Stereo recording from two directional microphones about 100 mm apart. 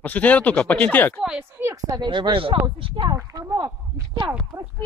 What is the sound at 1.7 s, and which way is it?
Speech, 35° right (ahead or behind).